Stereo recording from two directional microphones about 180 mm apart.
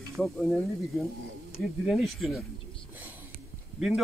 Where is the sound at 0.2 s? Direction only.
Centre (ahead or behind).